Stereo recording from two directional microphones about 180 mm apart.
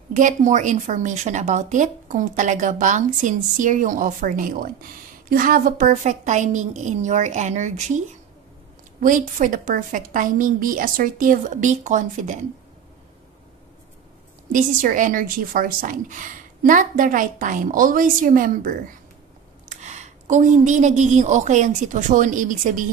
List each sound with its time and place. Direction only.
0.1 s a woman's voice: 45° right (ahead or behind)
9.0 s a woman's voice: 45° right (ahead or behind)
14.5 s a woman's voice: 45° right (ahead or behind)